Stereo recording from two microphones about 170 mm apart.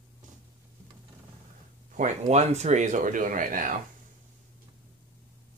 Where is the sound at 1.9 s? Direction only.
45° right (ahead or behind).